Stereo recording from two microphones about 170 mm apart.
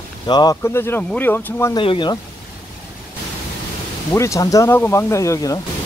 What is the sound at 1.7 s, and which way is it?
Speech, 30° left (ahead or behind).